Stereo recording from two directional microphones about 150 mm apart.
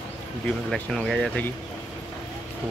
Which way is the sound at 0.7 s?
5° left (ahead or behind).